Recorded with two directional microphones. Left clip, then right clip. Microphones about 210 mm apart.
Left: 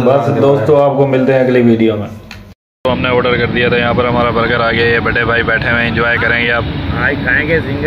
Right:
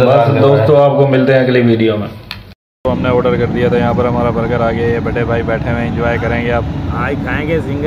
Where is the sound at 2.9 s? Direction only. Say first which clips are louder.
Left 1 dB; 5° right (ahead or behind).